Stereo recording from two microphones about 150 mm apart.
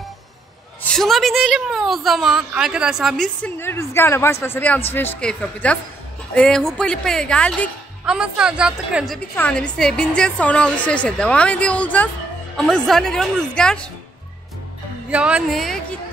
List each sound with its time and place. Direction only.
0.9 s a woman's voice: centre (ahead or behind)
3.4 s a woman's voice: 15° left (ahead or behind)
8.0 s a woman's voice: 5° right (ahead or behind)
15.0 s a woman's voice: 10° right (ahead or behind)